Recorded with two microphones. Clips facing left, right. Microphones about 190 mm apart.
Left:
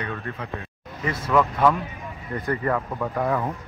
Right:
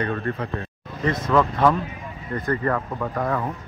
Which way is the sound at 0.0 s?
50° right (ahead or behind).